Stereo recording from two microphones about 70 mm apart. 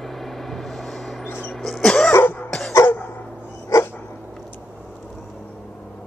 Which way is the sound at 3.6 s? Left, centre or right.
Left.